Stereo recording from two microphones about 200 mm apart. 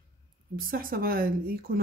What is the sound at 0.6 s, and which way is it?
Speech, 45° right (ahead or behind).